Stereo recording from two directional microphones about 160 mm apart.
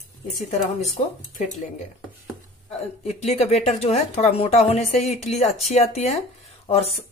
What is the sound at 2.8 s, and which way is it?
Speech, 45° left (ahead or behind).